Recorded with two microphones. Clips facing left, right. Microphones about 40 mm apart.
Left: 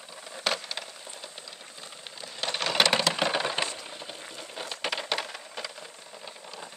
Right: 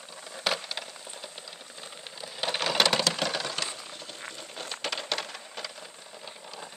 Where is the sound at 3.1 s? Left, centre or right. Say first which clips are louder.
Left 3 dB; left.